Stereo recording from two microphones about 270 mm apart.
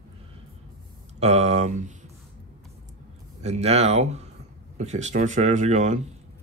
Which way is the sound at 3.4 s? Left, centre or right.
Right.